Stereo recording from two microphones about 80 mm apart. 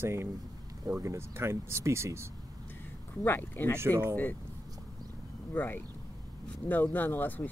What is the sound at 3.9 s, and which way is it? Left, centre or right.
Speech, right.